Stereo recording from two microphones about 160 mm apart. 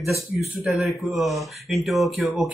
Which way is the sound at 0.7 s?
Centre (ahead or behind).